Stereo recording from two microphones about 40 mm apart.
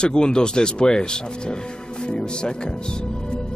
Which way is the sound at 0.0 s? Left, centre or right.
Left.